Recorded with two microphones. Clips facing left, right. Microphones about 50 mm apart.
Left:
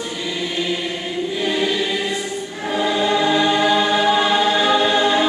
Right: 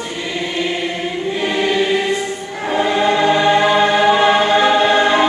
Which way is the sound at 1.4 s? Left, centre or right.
Right.